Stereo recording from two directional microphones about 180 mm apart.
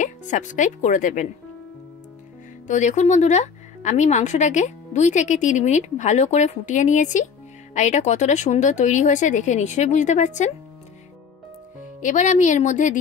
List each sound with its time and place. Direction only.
0.0 s speech: 45° left (ahead or behind)
2.6 s speech: 40° left (ahead or behind)
12.0 s speech: 45° left (ahead or behind)